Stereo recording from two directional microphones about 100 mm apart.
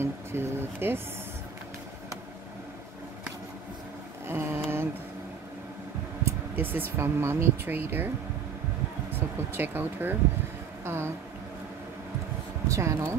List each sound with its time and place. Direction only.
0.0 s speech: 25° right (ahead or behind)
4.3 s a sound: 25° right (ahead or behind)
6.2 s speech: 20° right (ahead or behind)
9.5 s a woman's voice: 20° right (ahead or behind)
12.6 s speech: 30° right (ahead or behind)